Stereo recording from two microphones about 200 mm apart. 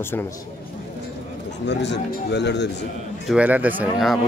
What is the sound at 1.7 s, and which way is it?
Speech, 60° left (ahead or behind).